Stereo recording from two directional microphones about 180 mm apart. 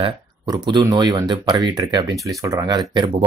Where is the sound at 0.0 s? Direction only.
25° right (ahead or behind).